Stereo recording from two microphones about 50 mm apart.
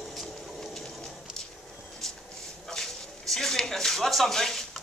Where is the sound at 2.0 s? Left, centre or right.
Centre.